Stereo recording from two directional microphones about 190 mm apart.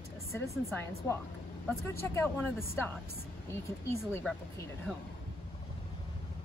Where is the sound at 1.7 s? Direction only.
15° left (ahead or behind).